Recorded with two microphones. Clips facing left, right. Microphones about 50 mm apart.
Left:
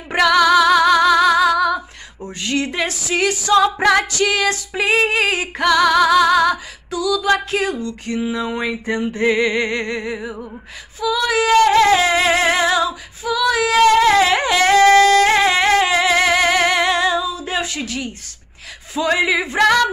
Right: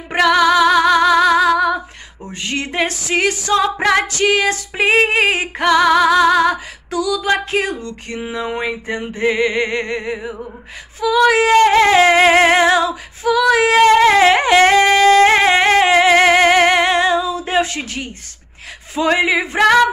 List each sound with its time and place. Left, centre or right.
0.1 s music: centre
2.4 s female singing: right
2.9 s music: right
3.9 s female singing: right
6.9 s music: right
7.3 s music: right
8.3 s female singing: right
9.1 s music: centre
11.0 s child singing: right
11.5 s music: right
14.8 s music: right
18.9 s female singing: right